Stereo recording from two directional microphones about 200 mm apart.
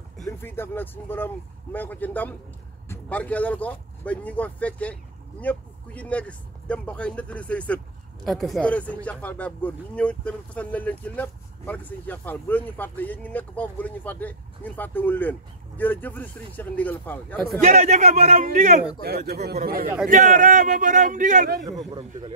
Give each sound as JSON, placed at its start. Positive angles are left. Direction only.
{"t": 0.2, "sound": "speech", "side_deg": 10}
{"t": 17.6, "sound": "a man's voice", "side_deg": -35}
{"t": 19.0, "sound": "a man's voice", "side_deg": -55}